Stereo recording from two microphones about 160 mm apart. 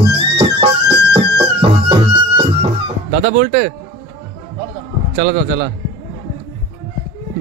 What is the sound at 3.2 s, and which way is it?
Music, 45° right (ahead or behind).